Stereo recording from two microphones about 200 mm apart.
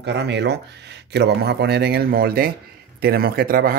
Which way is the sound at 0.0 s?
60° right (ahead or behind).